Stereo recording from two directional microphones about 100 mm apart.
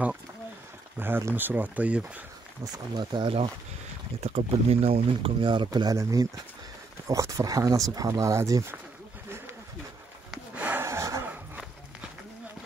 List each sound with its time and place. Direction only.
0.9 s speech: 20° right (ahead or behind)
3.0 s speech: 50° right (ahead or behind)
4.2 s speech: 90° right; by 8.7 s 30° right (ahead or behind)
10.3 s a sound: 15° right (ahead or behind)
10.8 s a sound: 30° right (ahead or behind)
11.2 s walk: 15° right (ahead or behind)